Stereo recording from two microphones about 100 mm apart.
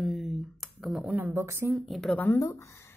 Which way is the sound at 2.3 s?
30° left (ahead or behind).